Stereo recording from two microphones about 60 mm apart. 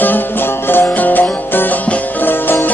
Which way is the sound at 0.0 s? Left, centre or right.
Left.